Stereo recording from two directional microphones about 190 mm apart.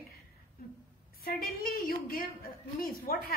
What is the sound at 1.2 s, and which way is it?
A woman's voice, 50° left (ahead or behind).